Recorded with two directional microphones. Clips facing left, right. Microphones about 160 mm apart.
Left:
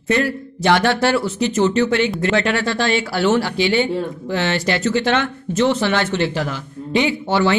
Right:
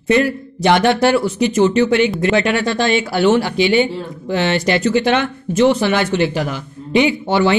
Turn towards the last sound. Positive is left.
turn(degrees=-15)  # may be behind; listen again after turning